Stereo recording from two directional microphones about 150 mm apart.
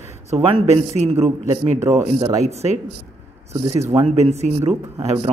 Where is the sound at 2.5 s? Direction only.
45° right (ahead or behind).